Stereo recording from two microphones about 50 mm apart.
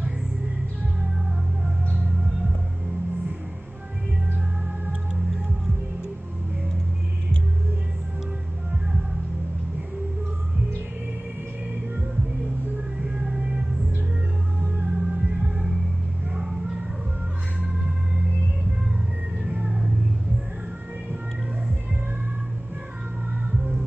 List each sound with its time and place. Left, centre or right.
13.0 s music: centre
14.9 s music: centre
16.3 s a sound: centre
19.5 s music: centre